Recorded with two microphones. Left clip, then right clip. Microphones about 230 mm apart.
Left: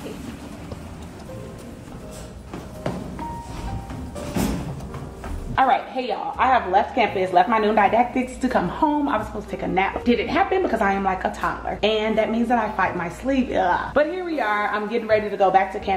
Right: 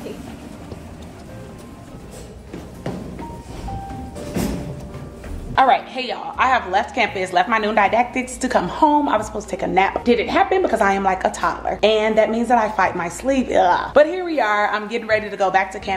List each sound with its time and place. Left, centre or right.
5.5 s speech: right